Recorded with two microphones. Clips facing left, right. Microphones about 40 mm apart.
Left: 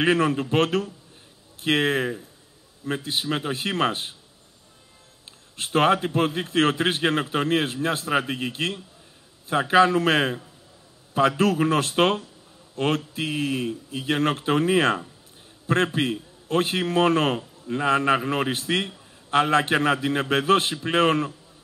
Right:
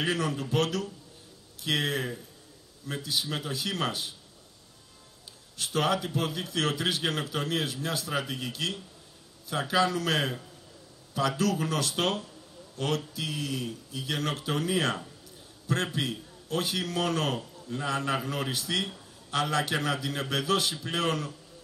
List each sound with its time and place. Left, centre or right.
0.0 s a man's voice: left
5.6 s a man's voice: left